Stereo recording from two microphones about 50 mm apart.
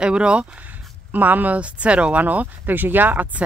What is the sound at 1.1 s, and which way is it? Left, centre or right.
Speech, right.